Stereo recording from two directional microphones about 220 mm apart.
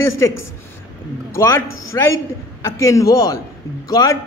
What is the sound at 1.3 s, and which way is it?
A man's voice, 10° left (ahead or behind).